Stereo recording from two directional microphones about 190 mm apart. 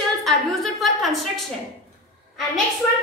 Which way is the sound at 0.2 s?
Centre (ahead or behind).